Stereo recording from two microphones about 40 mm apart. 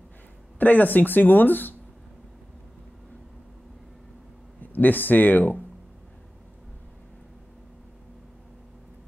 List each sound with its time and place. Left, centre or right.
0.6 s speech: left
4.6 s speech: left